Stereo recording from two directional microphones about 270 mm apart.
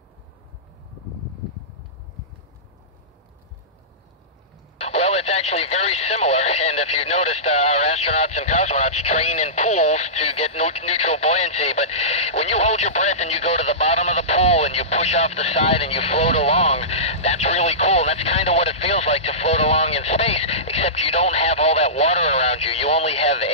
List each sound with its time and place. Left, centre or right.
4.8 s speech: left